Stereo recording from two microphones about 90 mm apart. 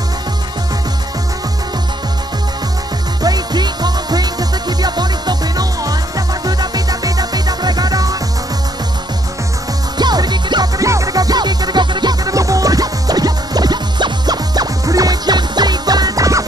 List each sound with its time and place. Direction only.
3.2 s music: 45° right (ahead or behind)
9.9 s music: 50° right (ahead or behind)
10.8 s music: 35° right (ahead or behind)